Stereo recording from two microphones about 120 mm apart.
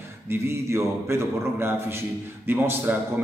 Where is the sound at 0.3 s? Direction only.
20° right (ahead or behind).